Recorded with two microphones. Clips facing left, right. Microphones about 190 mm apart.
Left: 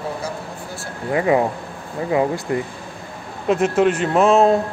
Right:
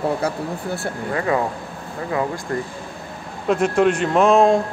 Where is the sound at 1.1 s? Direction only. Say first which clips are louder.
Left 5 dB; 20° left (ahead or behind).